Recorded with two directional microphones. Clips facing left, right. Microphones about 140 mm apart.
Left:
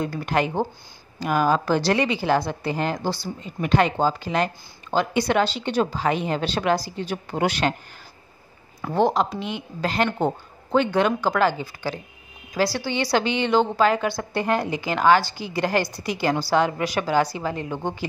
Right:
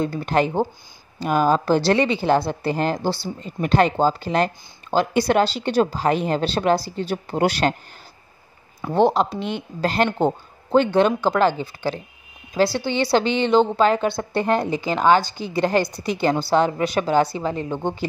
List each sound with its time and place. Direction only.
0.0 s a woman's voice: 30° right (ahead or behind)
8.9 s a woman's voice: 30° right (ahead or behind)
10.0 s a woman's voice: 25° right (ahead or behind)